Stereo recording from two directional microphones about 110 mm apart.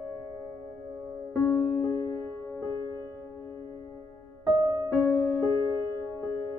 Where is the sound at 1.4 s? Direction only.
20° left (ahead or behind).